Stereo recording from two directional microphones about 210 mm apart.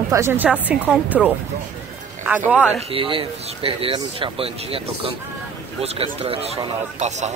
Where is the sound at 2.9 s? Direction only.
25° right (ahead or behind).